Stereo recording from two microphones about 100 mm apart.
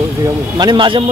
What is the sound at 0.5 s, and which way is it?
Speech, 50° right (ahead or behind).